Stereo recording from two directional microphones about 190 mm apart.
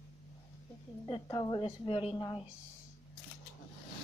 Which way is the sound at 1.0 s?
25° left (ahead or behind).